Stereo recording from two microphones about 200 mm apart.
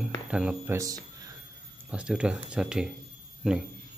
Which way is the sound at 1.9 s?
5° right (ahead or behind).